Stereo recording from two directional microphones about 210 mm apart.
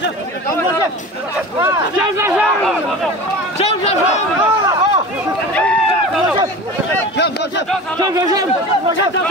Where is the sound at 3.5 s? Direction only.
30° left (ahead or behind).